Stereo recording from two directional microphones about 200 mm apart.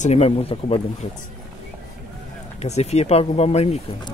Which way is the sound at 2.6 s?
35° left (ahead or behind).